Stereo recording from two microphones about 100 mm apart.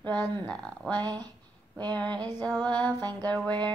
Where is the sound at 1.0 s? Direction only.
40° right (ahead or behind).